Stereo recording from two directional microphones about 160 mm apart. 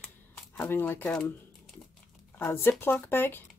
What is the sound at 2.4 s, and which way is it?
Speech, 15° left (ahead or behind).